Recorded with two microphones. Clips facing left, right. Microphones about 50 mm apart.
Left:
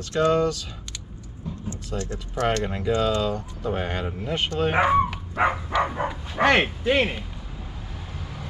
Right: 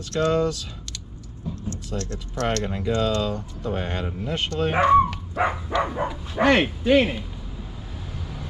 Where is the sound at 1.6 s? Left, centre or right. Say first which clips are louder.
Left 1 dB; centre.